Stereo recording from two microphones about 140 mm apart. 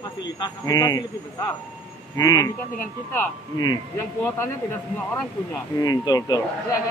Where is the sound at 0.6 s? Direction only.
25° left (ahead or behind).